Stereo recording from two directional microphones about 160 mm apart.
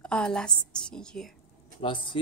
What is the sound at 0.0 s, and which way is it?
A woman's voice, 5° left (ahead or behind).